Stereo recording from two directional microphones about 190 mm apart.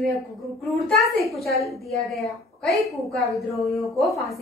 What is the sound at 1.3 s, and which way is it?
A woman's voice, centre (ahead or behind).